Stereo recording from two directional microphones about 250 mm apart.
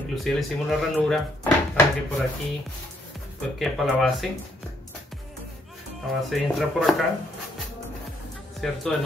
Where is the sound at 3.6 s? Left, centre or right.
Centre.